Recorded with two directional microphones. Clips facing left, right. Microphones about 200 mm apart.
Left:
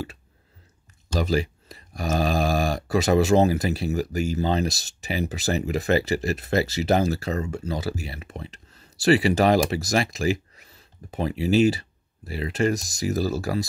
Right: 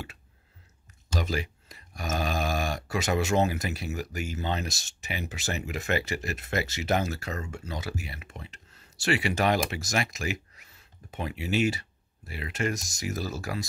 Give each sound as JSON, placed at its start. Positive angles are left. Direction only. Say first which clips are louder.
{"t": 1.1, "sound": "speech", "louder": "left 7 dB", "side_deg": 35}